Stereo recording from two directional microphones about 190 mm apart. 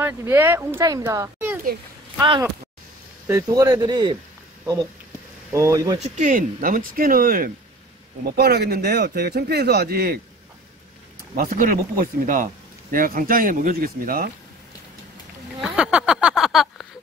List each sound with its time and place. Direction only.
0.0 s speech: 10° right (ahead or behind)
2.1 s speech: 25° right (ahead or behind)
5.5 s speech: 15° right (ahead or behind)
5.9 s speech: 40° right (ahead or behind); by 10.2 s 55° right (ahead or behind)
11.3 s speech: 50° right (ahead or behind)
15.6 s a sound: 5° right (ahead or behind)